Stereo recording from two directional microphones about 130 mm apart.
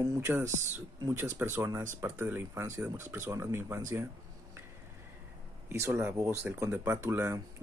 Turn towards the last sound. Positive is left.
turn(degrees=-20)  # may be behind; listen again after turning